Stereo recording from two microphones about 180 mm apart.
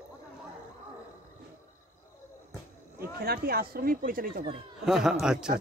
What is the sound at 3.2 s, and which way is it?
Speech, 55° right (ahead or behind).